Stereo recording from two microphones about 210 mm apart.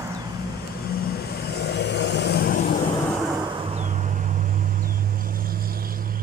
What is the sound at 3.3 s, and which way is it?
Vehicle, 25° right (ahead or behind).